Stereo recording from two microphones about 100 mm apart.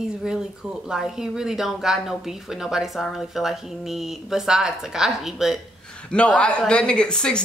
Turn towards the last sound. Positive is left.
turn(degrees=10)  # may be behind; listen again after turning